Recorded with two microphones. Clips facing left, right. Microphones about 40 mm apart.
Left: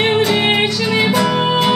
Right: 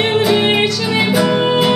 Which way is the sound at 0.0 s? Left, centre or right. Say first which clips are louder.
Right 1 dB; centre.